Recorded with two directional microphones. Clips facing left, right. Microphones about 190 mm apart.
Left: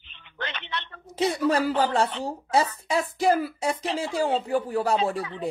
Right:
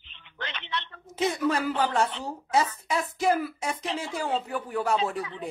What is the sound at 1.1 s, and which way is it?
Speech, 35° left (ahead or behind).